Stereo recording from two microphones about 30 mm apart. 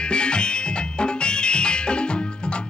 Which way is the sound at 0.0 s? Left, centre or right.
Left.